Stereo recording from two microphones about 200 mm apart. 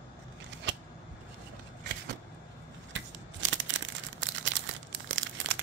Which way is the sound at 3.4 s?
70° right (ahead or behind).